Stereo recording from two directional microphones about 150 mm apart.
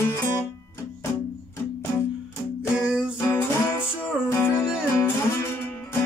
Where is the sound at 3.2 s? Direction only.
15° left (ahead or behind).